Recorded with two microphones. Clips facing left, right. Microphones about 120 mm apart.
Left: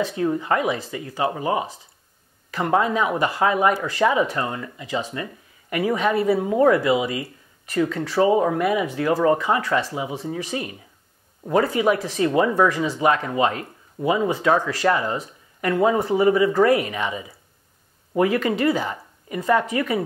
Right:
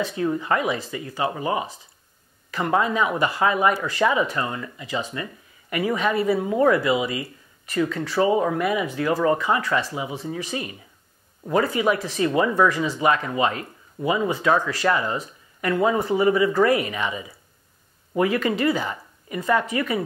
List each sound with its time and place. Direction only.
0.0 s speech: 45° left (ahead or behind)
6.4 s speech: 30° left (ahead or behind)
6.7 s speech: 45° left (ahead or behind)